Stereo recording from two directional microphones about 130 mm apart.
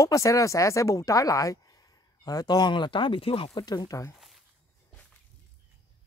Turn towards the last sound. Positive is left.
turn(degrees=25)  # may be behind; listen again after turning